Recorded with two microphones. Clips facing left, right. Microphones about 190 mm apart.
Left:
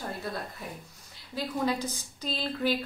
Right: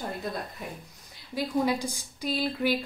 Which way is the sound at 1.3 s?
10° right (ahead or behind).